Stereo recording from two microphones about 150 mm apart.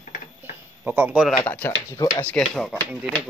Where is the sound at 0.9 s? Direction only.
10° right (ahead or behind).